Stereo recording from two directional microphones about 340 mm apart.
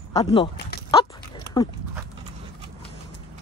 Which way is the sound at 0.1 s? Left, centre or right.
Centre.